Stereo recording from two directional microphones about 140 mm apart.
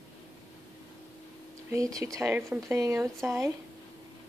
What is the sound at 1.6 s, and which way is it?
Speech, 25° right (ahead or behind).